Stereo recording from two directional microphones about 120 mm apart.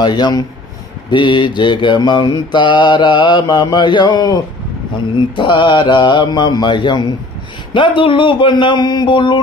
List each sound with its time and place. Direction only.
0.0 s mantra: 35° left (ahead or behind)